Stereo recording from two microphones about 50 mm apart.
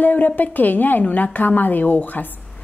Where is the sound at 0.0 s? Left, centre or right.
Left.